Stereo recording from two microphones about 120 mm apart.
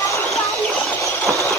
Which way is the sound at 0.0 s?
25° left (ahead or behind).